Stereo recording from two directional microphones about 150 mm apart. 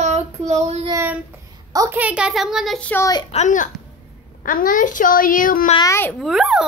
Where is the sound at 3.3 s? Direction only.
55° left (ahead or behind).